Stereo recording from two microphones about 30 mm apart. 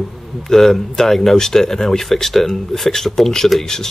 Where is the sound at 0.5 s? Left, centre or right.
Centre.